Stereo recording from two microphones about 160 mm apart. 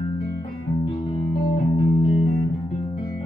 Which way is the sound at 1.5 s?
35° left (ahead or behind).